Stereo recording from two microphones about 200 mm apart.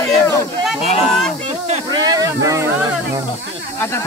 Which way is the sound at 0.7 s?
30° left (ahead or behind).